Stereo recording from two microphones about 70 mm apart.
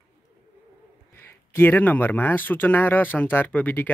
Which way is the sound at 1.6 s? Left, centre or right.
Left.